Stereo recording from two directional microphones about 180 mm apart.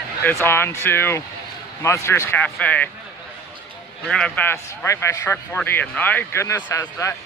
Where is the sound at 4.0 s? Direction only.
5° left (ahead or behind).